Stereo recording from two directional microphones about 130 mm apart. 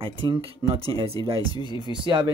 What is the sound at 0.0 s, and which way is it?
Speech, 45° right (ahead or behind).